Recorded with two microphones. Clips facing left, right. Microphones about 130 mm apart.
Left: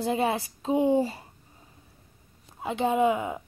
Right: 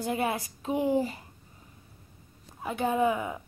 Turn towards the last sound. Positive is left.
turn(degrees=20)  # may be behind; listen again after turning